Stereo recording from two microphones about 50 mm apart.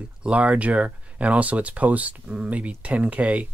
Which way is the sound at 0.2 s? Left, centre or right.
Right.